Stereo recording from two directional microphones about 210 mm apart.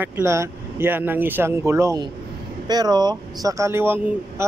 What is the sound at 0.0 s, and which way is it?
Speech, 15° right (ahead or behind).